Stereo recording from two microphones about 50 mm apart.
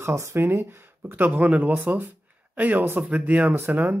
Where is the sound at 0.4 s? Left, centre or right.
Right.